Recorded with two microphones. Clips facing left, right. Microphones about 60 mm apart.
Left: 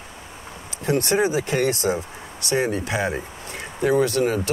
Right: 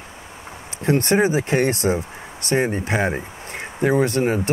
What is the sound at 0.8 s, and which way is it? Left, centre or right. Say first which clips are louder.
Speech: right 3 dB; right.